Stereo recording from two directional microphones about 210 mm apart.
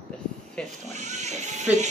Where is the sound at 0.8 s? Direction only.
35° right (ahead or behind).